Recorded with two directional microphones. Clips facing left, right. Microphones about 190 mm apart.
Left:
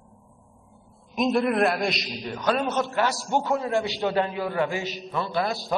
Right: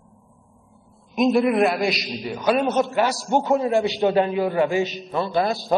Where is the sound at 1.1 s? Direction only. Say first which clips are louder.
Right 4 dB; centre (ahead or behind).